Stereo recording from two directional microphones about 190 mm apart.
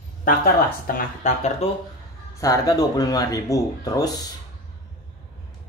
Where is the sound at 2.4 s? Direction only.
20° left (ahead or behind).